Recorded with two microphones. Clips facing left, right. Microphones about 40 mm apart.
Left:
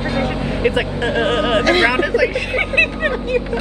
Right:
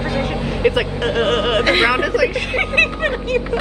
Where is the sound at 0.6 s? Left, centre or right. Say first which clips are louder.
Right 1 dB; centre.